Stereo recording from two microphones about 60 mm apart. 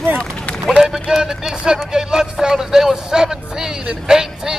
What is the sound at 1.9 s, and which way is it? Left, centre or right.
A man's voice, centre.